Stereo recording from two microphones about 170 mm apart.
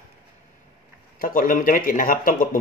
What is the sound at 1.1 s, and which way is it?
Speech, 55° left (ahead or behind).